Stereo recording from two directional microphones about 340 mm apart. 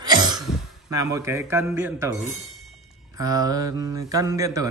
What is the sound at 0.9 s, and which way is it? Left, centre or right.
Speech, centre.